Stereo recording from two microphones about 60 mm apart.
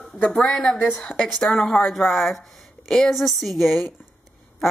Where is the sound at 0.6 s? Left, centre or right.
Left.